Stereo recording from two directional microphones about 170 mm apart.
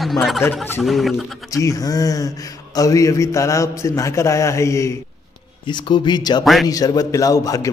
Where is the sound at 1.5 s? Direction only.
20° left (ahead or behind).